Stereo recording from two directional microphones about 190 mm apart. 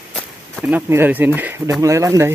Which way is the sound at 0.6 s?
10° right (ahead or behind).